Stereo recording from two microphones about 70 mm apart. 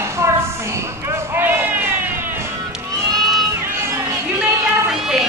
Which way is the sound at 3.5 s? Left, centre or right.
Right.